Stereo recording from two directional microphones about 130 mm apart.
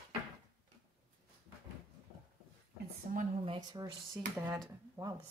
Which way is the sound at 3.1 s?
90° right.